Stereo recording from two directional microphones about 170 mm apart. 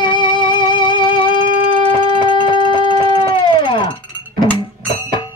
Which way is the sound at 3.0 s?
25° left (ahead or behind).